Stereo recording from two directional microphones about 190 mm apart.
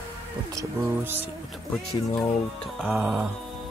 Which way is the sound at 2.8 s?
5° right (ahead or behind).